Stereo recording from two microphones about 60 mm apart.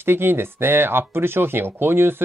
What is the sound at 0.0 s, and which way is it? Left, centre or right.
Speech, right.